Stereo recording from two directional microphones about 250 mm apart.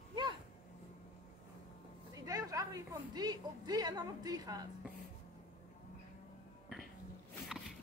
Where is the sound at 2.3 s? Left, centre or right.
Centre.